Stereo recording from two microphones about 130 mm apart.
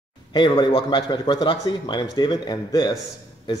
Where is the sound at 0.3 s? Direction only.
35° left (ahead or behind).